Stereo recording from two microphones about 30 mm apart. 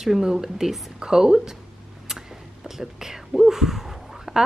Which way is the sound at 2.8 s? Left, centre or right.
Centre.